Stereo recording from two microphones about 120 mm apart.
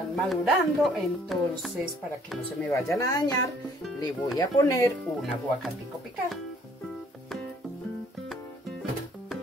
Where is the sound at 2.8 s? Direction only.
30° left (ahead or behind).